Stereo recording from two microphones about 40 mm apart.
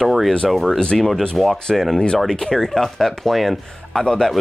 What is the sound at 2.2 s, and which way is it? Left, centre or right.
Speech, centre.